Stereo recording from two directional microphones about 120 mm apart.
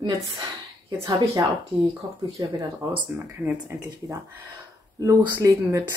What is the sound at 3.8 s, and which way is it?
Speech, 30° right (ahead or behind).